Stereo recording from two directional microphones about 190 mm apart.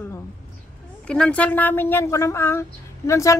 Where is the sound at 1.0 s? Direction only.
5° left (ahead or behind).